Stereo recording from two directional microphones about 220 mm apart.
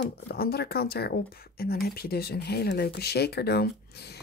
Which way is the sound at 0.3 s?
45° left (ahead or behind).